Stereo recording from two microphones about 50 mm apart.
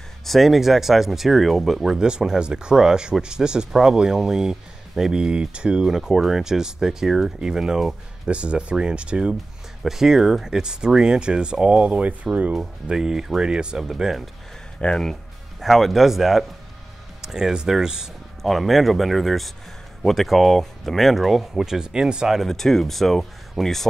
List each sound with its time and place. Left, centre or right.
0.2 s speech: centre
2.0 s speech: centre
9.8 s speech: centre; by 12.3 s right
12.8 s speech: centre
13.8 s speech: centre
14.8 s speech: centre
15.6 s speech: centre
18.4 s speech: centre
22.5 s speech: centre